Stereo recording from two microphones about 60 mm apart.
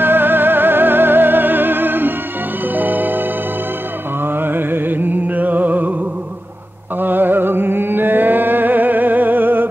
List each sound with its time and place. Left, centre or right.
0.0 s music: right
4.4 s music: right
7.0 s music: right